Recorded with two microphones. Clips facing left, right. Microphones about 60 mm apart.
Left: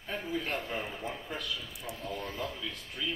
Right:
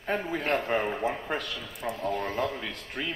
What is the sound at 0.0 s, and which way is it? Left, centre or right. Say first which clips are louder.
Speech: right 6 dB; right.